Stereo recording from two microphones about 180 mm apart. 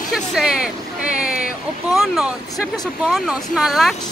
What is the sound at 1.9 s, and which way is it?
Speech, centre (ahead or behind).